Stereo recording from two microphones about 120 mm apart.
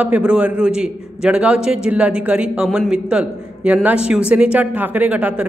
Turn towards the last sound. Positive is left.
turn(degrees=-10)  # may be behind; listen again after turning